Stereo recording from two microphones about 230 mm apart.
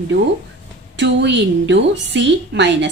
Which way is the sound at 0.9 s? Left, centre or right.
Right.